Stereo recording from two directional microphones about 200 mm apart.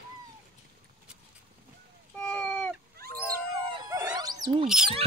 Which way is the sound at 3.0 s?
50° right (ahead or behind).